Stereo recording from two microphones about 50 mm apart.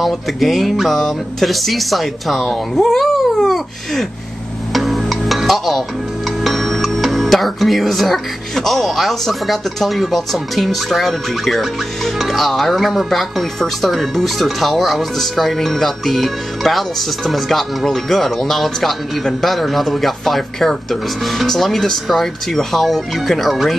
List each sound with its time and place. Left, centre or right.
0.0 s speech: centre
4.7 s music: centre
6.4 s speech: centre